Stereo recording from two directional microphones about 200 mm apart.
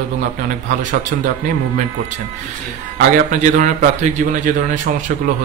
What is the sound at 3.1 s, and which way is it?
A man's voice, 40° right (ahead or behind).